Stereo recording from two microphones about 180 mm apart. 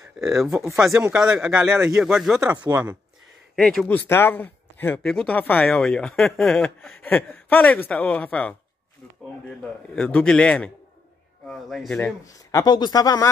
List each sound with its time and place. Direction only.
0.2 s speech: centre (ahead or behind)
3.5 s speech: 5° left (ahead or behind)
9.6 s speech: 5° left (ahead or behind)
12.4 s speech: 20° left (ahead or behind)